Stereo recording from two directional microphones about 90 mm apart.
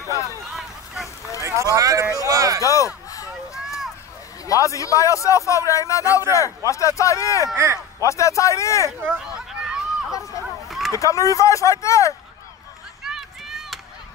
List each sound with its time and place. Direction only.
0.5 s vehicle: centre (ahead or behind)
1.4 s speech: 35° right (ahead or behind)
2.6 s a man's voice: 40° left (ahead or behind)
4.5 s a man's voice: 40° left (ahead or behind)
7.5 s speech: 30° right (ahead or behind)
8.0 s a man's voice: 35° left (ahead or behind)
9.3 s a sound: 10° right (ahead or behind)
10.9 s a man's voice: 35° left (ahead or behind)
13.0 s run: 5° right (ahead or behind)